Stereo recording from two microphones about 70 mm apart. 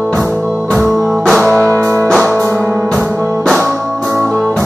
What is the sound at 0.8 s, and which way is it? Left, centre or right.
Music, centre.